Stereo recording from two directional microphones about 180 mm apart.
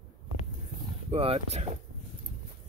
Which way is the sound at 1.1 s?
35° right (ahead or behind).